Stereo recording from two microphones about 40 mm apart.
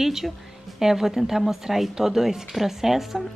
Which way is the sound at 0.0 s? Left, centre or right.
Centre.